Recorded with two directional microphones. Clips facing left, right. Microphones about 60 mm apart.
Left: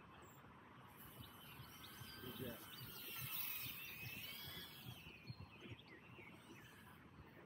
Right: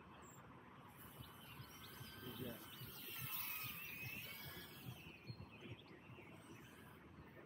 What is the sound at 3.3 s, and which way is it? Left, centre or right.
Music, right.